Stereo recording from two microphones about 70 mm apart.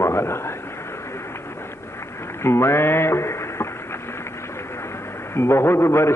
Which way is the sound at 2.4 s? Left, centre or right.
Left.